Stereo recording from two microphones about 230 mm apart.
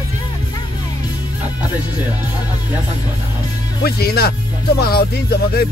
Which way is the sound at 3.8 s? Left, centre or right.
Left.